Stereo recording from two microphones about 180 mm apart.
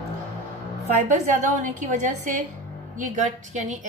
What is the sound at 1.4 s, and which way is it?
A woman's voice, 45° right (ahead or behind).